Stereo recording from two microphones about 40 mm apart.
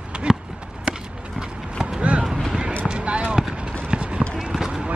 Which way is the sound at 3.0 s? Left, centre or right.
Right.